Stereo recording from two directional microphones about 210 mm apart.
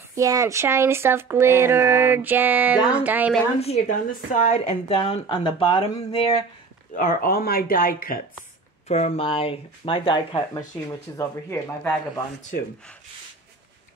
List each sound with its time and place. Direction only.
0.1 s speech: 15° right (ahead or behind)
3.6 s speech: 35° left (ahead or behind)
7.0 s speech: 40° left (ahead or behind)
8.8 s speech: 30° left (ahead or behind); by 11.9 s 15° left (ahead or behind)